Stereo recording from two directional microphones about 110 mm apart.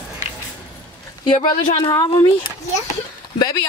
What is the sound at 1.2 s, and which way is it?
Speech, 45° left (ahead or behind).